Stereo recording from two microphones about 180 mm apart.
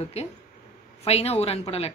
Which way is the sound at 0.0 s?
35° left (ahead or behind).